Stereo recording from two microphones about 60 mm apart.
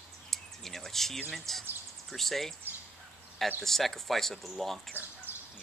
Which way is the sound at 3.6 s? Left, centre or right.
Centre.